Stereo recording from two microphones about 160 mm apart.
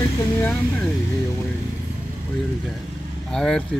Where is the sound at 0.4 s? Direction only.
10° left (ahead or behind).